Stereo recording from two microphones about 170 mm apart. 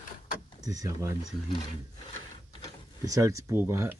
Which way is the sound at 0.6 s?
20° right (ahead or behind).